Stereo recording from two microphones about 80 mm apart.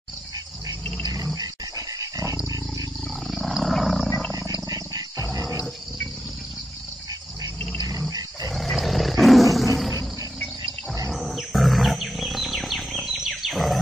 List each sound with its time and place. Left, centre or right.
1.0 s dog: right
3.3 s wild animals: centre
4.6 s wild animals: right
5.3 s a sound: right
8.5 s roar: centre
11.1 s wild animals: centre